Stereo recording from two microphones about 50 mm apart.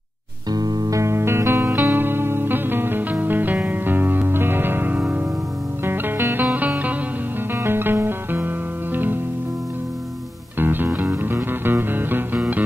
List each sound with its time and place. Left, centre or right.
0.9 s music: right
6.4 s music: right
7.5 s music: right
10.6 s music: right